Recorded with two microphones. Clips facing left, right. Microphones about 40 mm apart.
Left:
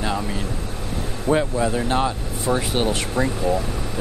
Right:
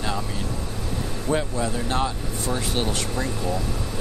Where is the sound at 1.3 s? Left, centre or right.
Centre.